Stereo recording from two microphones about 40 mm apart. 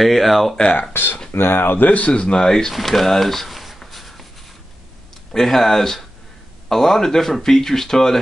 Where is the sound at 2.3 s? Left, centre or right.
Centre.